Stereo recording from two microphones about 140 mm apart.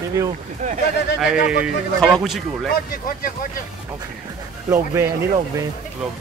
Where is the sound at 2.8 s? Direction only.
85° left.